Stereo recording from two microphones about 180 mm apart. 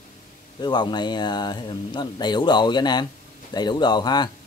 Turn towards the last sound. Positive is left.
turn(degrees=25)  # may be behind; listen again after turning